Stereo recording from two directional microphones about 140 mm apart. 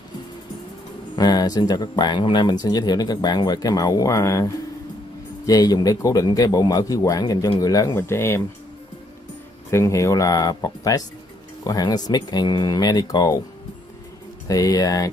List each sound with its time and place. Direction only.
1.1 s speech: 30° left (ahead or behind)
5.5 s speech: 25° left (ahead or behind)
9.7 s speech: 20° left (ahead or behind)
14.5 s speech: 25° left (ahead or behind)